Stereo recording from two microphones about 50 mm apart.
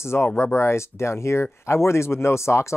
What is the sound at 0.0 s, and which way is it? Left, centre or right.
Speech, left.